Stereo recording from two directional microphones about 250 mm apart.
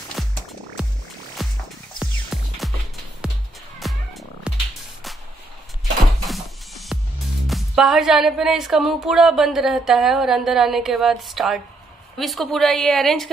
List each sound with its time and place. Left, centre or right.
0.2 s music: centre
1.4 s music: centre
2.6 s music: centre
6.2 s music: centre